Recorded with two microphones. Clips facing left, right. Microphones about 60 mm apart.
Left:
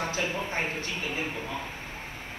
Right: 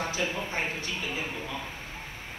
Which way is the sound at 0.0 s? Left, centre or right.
Left.